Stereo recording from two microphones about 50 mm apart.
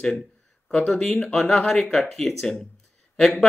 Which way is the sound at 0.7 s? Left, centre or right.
Left.